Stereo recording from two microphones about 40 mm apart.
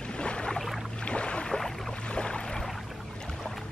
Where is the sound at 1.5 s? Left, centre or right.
Centre.